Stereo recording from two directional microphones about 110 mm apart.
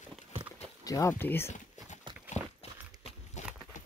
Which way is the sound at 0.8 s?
30° left (ahead or behind).